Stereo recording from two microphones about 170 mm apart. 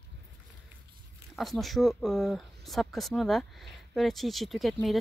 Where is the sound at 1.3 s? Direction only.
Centre (ahead or behind).